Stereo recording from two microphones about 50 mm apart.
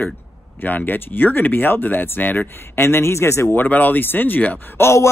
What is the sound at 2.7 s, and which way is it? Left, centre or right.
Speech, left.